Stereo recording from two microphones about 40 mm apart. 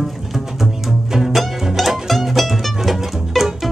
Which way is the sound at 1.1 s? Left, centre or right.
Centre.